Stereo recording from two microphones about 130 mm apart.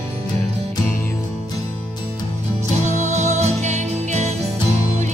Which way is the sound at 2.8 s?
65° right (ahead or behind).